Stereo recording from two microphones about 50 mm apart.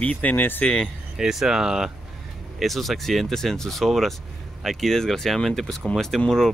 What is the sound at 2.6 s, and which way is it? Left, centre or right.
Speech, centre.